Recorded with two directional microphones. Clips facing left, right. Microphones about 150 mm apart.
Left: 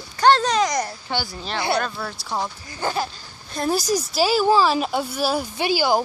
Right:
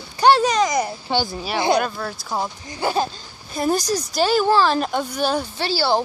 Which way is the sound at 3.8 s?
5° left (ahead or behind).